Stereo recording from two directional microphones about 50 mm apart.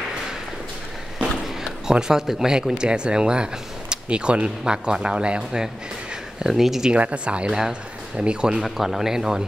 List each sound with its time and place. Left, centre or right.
1.6 s speech: centre
6.4 s speech: centre
6.9 s speech: right
8.5 s speech: centre